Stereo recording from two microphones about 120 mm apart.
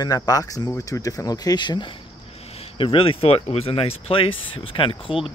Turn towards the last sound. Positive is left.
turn(degrees=45)  # may be behind; listen again after turning